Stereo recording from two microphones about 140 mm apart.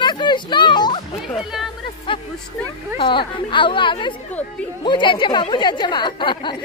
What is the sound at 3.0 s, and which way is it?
A woman's voice, 35° left (ahead or behind).